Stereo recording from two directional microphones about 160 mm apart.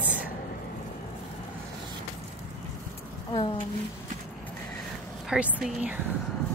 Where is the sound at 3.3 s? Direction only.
35° left (ahead or behind).